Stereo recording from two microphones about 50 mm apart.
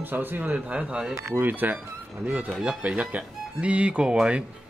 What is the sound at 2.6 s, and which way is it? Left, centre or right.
Speech, right.